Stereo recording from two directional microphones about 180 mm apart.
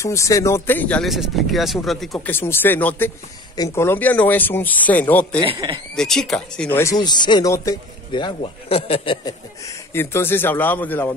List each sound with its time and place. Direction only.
0.0 s speech: 15° left (ahead or behind)
5.5 s speech: 30° right (ahead or behind)
5.9 s speech: 5° left (ahead or behind)
6.8 s speech: 20° left (ahead or behind)
9.9 s speech: 15° left (ahead or behind)